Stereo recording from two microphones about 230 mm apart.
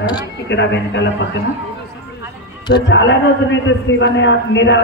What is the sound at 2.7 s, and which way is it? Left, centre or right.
A man's voice, left.